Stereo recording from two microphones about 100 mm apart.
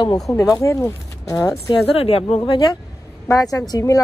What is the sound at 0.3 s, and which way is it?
Speech, 35° left (ahead or behind).